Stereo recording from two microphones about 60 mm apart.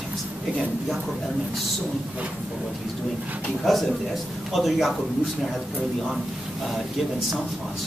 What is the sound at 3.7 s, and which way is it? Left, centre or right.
Speech, centre.